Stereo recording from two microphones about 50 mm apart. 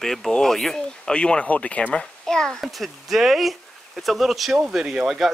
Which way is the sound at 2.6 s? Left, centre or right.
Centre.